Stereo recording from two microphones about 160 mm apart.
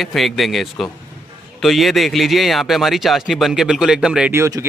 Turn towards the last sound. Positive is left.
turn(degrees=-15)  # may be behind; listen again after turning